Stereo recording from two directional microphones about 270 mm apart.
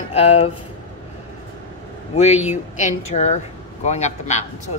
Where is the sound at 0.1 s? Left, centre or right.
Left.